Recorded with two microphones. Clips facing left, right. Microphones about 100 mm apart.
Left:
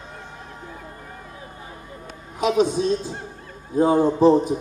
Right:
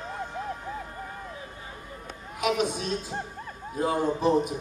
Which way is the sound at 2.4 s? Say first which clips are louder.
Left 7 dB; 30° left (ahead or behind).